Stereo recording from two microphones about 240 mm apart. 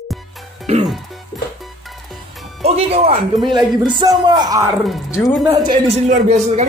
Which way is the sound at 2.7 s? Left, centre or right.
Right.